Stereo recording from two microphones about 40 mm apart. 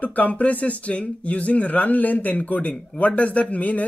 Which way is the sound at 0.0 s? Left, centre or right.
Left.